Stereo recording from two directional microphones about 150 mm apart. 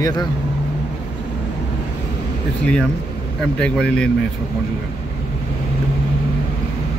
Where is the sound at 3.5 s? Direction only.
5° left (ahead or behind).